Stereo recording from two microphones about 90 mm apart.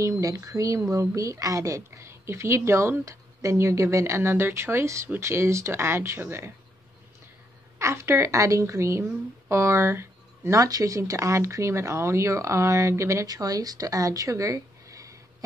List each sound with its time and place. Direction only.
0.0 s speech: 35° right (ahead or behind)
7.8 s speech: 35° right (ahead or behind)